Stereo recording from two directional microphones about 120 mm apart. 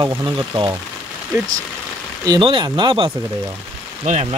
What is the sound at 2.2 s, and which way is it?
Speech, 40° right (ahead or behind).